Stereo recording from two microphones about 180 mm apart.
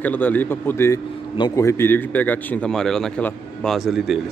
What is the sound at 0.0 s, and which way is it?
A man's voice, 10° left (ahead or behind).